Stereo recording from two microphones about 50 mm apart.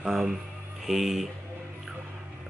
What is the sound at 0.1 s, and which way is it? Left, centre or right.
A man's voice, centre.